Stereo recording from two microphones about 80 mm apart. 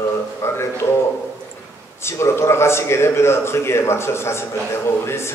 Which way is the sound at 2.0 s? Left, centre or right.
Left.